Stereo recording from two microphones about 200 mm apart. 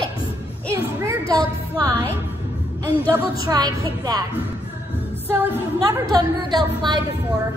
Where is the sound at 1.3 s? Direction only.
15° right (ahead or behind).